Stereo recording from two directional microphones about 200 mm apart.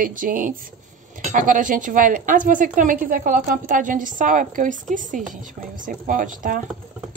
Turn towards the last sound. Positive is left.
turn(degrees=-40)  # may be behind; listen again after turning